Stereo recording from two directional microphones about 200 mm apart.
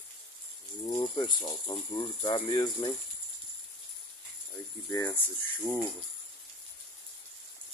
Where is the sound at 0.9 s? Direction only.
25° left (ahead or behind).